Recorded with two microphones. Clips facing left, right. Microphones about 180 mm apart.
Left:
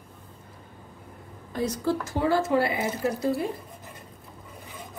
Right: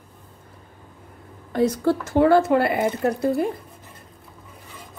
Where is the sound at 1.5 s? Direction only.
65° right (ahead or behind).